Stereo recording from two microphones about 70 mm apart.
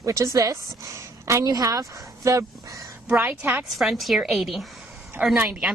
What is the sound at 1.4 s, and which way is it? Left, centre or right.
Speech, right.